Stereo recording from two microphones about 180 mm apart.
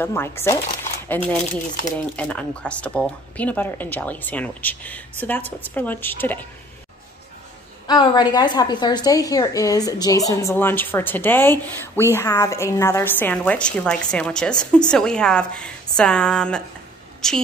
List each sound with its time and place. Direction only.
0.0 s a woman's voice: 15° left (ahead or behind)
7.8 s a woman's voice: 25° left (ahead or behind); by 17.4 s 5° left (ahead or behind)